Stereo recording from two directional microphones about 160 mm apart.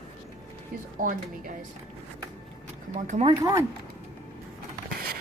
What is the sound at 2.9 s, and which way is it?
Speech, 50° right (ahead or behind).